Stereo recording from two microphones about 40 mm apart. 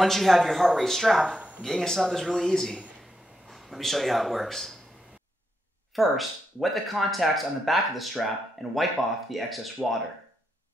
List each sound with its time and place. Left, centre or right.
0.0 s speech: centre
1.2 s speech: right
1.6 s a man's voice: centre
3.4 s speech: centre
5.9 s speech: centre